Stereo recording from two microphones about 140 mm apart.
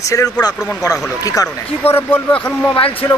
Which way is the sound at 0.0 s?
25° left (ahead or behind).